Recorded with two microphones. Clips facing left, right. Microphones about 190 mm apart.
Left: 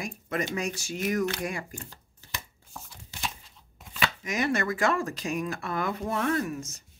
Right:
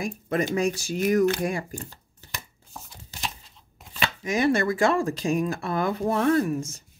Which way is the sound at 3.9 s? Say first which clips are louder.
Right 4 dB; 30° right (ahead or behind).